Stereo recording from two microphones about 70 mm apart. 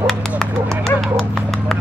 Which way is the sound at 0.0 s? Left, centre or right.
Centre.